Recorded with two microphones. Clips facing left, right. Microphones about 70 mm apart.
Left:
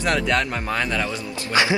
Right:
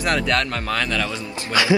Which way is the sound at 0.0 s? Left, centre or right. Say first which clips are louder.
Even; centre.